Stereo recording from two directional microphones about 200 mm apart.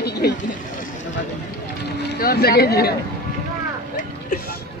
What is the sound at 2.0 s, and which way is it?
Speech, 50° left (ahead or behind).